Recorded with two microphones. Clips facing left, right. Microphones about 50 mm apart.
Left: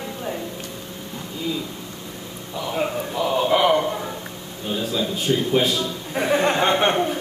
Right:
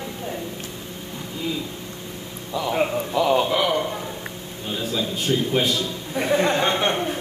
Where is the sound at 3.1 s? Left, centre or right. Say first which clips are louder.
Right 4 dB; right.